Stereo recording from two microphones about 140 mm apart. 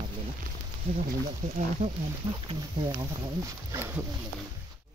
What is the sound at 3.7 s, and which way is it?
Speech, 15° right (ahead or behind).